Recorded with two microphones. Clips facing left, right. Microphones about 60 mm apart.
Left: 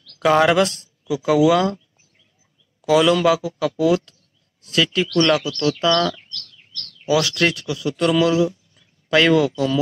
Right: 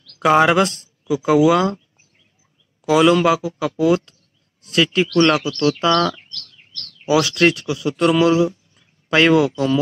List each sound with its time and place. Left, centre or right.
0.1 s speech: centre
2.8 s a man's voice: centre